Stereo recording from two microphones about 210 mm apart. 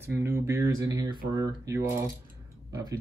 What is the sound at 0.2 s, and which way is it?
Speech, 10° right (ahead or behind).